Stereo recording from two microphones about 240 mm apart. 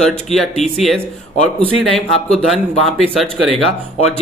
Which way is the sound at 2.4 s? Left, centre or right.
Centre.